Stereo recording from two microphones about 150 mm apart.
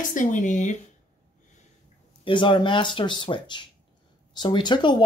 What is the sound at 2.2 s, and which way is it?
Speech, 30° left (ahead or behind).